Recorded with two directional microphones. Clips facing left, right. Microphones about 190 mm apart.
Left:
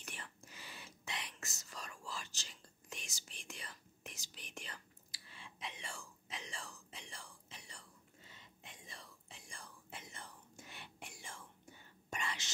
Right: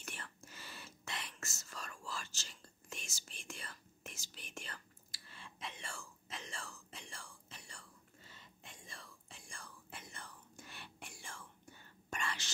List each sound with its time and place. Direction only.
0.0 s whispering: 15° left (ahead or behind)